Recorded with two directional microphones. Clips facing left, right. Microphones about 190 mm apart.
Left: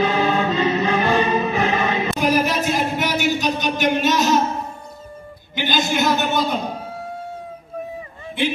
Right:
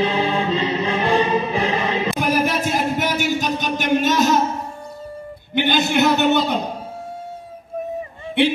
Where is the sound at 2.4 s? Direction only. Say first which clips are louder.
Even; 50° right (ahead or behind).